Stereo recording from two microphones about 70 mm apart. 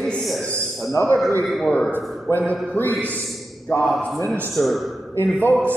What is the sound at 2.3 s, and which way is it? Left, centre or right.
Speech, left.